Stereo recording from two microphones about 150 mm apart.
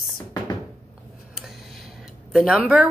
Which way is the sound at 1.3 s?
Centre (ahead or behind).